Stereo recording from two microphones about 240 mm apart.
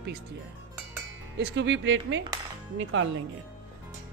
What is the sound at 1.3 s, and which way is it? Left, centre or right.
Speech, right.